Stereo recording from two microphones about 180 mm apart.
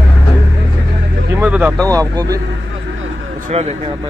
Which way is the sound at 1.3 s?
10° right (ahead or behind).